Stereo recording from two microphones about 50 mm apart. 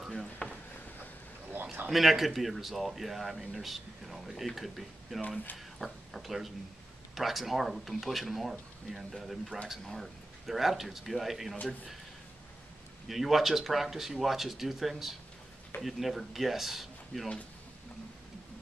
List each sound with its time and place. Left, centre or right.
0.1 s a sound: centre
1.9 s speech: centre
13.1 s speech: centre